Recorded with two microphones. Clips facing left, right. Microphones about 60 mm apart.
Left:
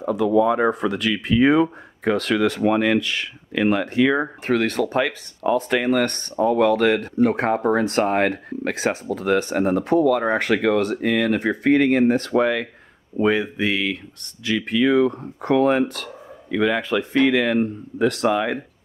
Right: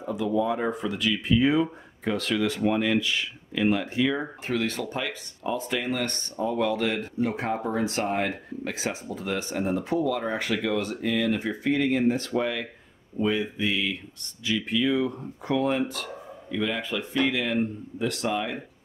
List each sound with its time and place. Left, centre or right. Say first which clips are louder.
0.0 s speech: left 8 dB; left